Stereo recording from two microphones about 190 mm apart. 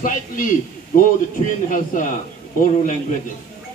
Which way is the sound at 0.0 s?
45° left (ahead or behind).